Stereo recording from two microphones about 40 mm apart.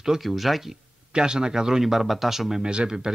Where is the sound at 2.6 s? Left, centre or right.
Right.